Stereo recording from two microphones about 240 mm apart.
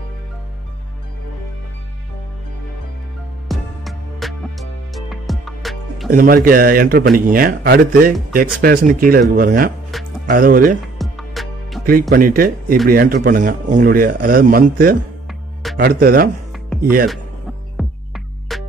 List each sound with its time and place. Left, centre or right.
3.4 s music: centre
6.0 s speech: right
11.0 s music: centre
12.1 s speech: right
17.7 s music: centre